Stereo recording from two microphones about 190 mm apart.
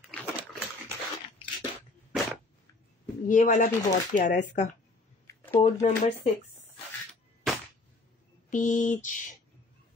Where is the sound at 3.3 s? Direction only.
40° left (ahead or behind).